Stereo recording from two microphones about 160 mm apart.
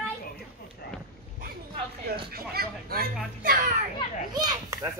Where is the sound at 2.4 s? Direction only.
70° right (ahead or behind).